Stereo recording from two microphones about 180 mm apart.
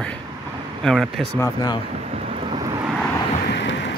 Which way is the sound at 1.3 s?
15° left (ahead or behind).